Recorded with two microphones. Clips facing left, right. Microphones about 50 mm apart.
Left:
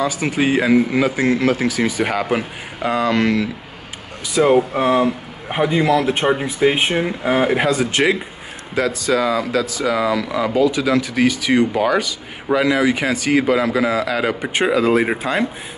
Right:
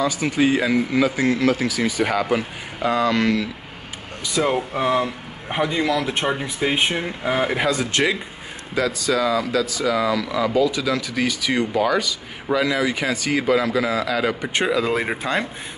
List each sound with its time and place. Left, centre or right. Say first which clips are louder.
0.0 s a man's voice: left 1 dB; left
4.4 s speech: left 7 dB; centre
8.7 s a man's voice: left 3 dB; left
14.9 s speech: left 5 dB; centre